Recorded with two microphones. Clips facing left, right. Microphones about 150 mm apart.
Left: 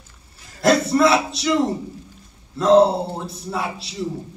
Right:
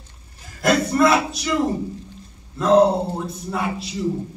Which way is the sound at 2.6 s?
30° left (ahead or behind).